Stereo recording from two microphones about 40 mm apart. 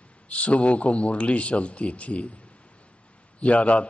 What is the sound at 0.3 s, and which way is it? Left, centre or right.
A man's voice, left.